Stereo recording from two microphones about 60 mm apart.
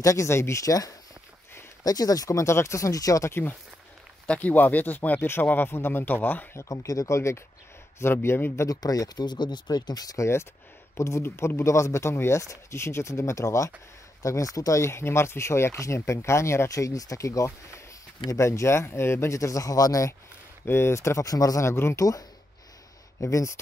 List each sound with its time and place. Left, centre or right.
0.0 s speech: left
0.3 s speech: left
0.7 s speech: left
1.8 s speech: left
3.3 s speech: left
4.3 s speech: left
6.7 s speech: left
8.6 s speech: left
10.2 s speech: left
14.8 s speech: left
20.6 s speech: left
21.2 s speech: left
21.6 s speech: left
23.2 s speech: left